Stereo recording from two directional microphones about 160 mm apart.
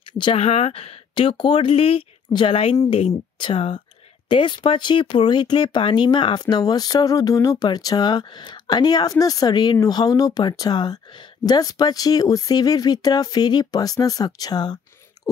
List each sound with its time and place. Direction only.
0.2 s speech: 40° left (ahead or behind)